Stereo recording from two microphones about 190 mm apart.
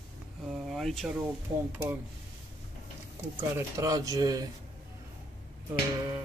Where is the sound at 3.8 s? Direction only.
20° right (ahead or behind).